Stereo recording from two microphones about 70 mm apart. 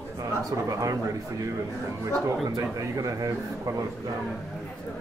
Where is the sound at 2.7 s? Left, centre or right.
Right.